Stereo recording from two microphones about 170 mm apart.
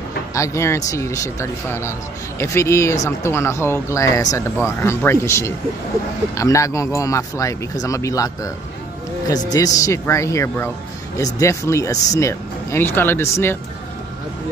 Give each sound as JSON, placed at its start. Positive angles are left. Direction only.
{"t": 0.3, "sound": "speech", "side_deg": 20}